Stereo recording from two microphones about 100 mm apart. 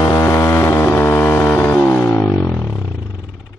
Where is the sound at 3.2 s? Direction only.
5° right (ahead or behind).